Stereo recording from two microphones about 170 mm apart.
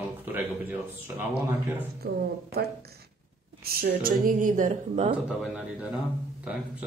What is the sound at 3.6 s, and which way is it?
Speech, 60° right (ahead or behind).